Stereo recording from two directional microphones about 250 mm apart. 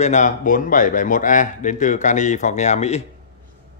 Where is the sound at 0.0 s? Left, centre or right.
Left.